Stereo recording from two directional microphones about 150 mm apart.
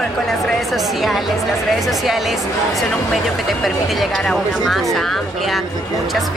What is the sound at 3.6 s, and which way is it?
Speech, centre (ahead or behind).